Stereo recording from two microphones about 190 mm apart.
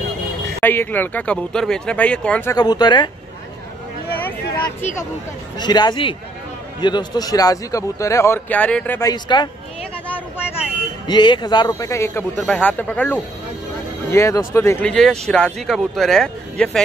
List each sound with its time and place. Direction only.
0.6 s a man's voice: 10° left (ahead or behind)
2.5 s speech: 20° left (ahead or behind)
5.6 s a man's voice: 20° left (ahead or behind)
9.1 s speech: 20° left (ahead or behind)
11.1 s a man's voice: 25° left (ahead or behind)
14.9 s speech: 5° left (ahead or behind)